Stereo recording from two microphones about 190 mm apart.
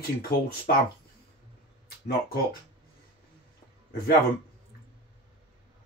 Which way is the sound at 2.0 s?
55° left (ahead or behind).